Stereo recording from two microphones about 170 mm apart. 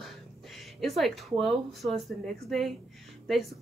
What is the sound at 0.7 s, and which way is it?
A woman's voice, centre (ahead or behind).